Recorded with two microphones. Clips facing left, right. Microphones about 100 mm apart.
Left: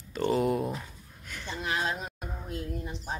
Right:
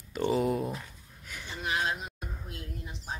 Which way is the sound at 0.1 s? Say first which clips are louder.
Left 1 dB; centre (ahead or behind).